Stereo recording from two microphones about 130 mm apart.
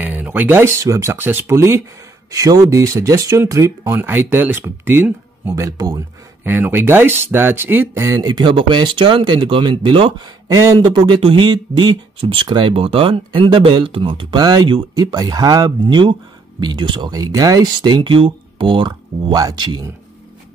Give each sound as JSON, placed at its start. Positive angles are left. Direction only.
{"t": 0.0, "sound": "speech", "side_deg": -15}
{"t": 5.6, "sound": "speech", "side_deg": -30}
{"t": 6.4, "sound": "speech", "side_deg": -15}